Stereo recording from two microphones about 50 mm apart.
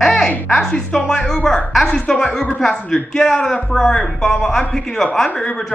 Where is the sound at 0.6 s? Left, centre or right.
Centre.